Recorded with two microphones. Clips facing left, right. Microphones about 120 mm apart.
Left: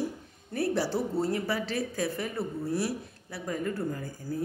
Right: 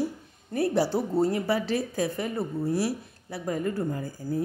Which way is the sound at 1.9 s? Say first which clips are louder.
Right 3 dB; 20° right (ahead or behind).